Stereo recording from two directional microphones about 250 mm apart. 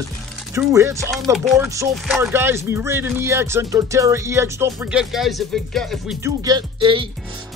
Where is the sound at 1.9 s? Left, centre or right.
Centre.